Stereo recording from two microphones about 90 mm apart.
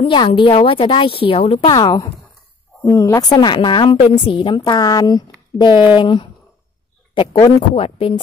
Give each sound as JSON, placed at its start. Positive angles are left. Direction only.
{"t": 0.0, "sound": "speech", "side_deg": 65}
{"t": 1.8, "sound": "a woman's voice", "side_deg": 45}
{"t": 3.2, "sound": "a woman's voice", "side_deg": 50}
{"t": 4.6, "sound": "a woman's voice", "side_deg": 50}
{"t": 7.7, "sound": "speech", "side_deg": 90}